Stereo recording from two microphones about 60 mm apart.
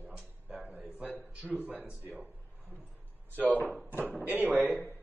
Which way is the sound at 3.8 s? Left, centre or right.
Right.